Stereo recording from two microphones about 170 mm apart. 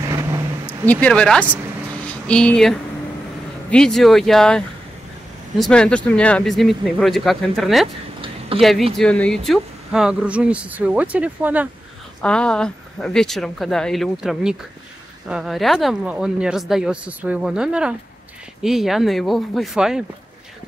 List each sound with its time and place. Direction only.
0.1 s vehicle: 20° right (ahead or behind)
0.7 s speech: 10° left (ahead or behind); by 11.7 s 10° right (ahead or behind)
12.2 s speech: 5° left (ahead or behind)